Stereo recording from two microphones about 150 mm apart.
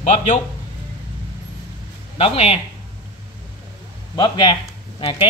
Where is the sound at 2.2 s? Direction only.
45° left (ahead or behind).